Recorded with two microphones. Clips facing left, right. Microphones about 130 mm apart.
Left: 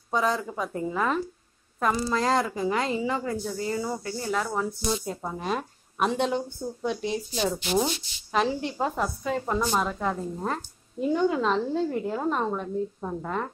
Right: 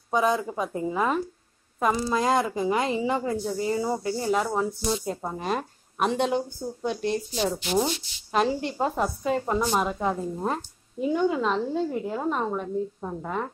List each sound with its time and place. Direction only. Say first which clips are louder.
0.1 s a woman's voice: right 2 dB; 15° right (ahead or behind)
4.8 s speech: right 1 dB; 5° right (ahead or behind)
11.0 s speech: even; 5° right (ahead or behind)